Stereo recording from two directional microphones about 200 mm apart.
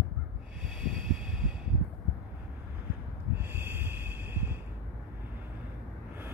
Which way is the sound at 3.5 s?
10° right (ahead or behind).